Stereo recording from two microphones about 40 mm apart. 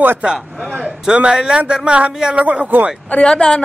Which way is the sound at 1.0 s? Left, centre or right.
Right.